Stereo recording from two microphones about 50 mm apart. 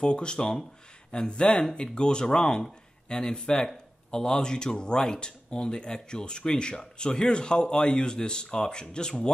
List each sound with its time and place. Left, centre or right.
0.0 s speech: centre